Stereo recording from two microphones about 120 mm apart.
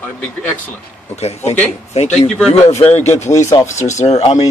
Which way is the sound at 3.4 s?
25° left (ahead or behind).